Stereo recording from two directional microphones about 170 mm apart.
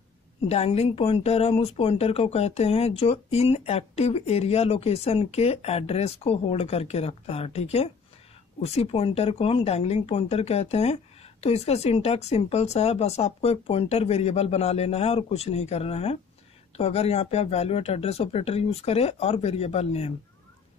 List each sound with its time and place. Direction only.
0.5 s speech: 35° left (ahead or behind)